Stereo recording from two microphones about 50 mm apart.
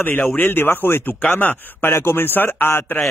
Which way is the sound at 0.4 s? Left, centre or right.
Left.